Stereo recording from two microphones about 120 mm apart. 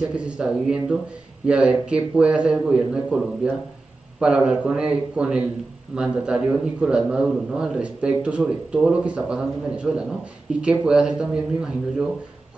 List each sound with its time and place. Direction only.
0.1 s a man's voice: 10° right (ahead or behind)